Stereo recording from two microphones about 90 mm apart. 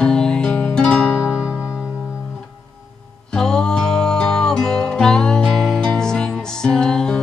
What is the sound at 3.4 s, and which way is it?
Music, 5° left (ahead or behind).